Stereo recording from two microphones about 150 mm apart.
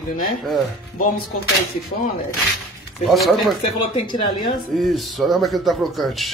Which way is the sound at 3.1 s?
Centre (ahead or behind).